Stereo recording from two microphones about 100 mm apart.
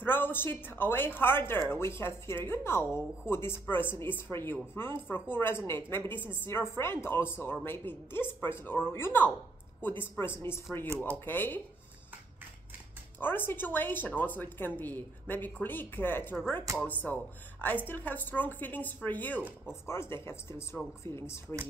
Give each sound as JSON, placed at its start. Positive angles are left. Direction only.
{"t": 0.0, "sound": "a woman's voice", "side_deg": 20}
{"t": 13.2, "sound": "a woman's voice", "side_deg": 20}